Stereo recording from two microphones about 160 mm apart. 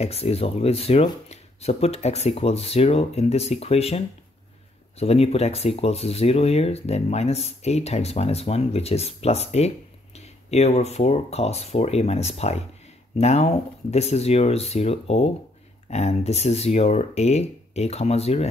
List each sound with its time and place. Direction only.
0.0 s speech: 40° left (ahead or behind)